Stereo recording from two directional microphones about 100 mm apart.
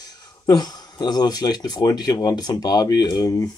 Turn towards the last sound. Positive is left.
turn(degrees=35)  # may be behind; listen again after turning